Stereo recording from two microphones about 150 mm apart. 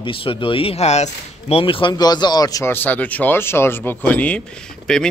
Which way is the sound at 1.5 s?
35° left (ahead or behind).